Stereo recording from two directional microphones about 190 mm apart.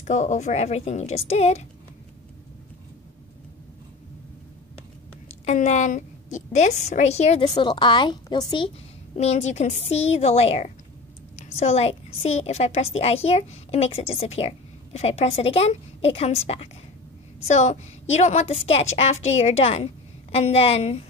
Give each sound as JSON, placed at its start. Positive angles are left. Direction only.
{"t": 0.0, "sound": "a woman's voice", "side_deg": 40}
{"t": 5.4, "sound": "a woman's voice", "side_deg": 35}
{"t": 7.4, "sound": "a woman's voice", "side_deg": 20}